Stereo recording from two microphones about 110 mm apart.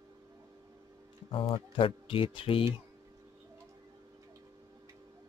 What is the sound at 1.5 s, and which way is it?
Speech, 55° left (ahead or behind).